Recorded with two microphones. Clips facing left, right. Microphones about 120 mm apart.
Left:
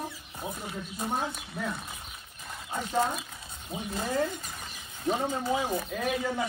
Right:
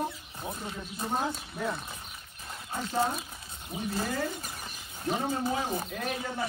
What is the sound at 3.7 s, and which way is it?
Speech, 25° left (ahead or behind).